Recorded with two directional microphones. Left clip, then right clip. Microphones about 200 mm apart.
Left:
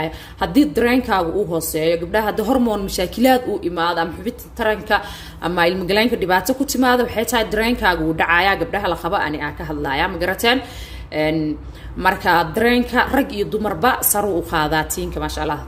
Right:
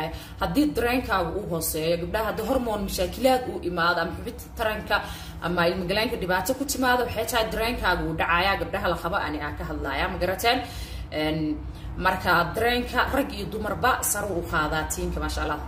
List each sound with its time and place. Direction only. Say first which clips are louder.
0.0 s a woman's voice: left 6 dB; 40° left (ahead or behind)
12.0 s a woman's voice: left 6 dB; 45° left (ahead or behind)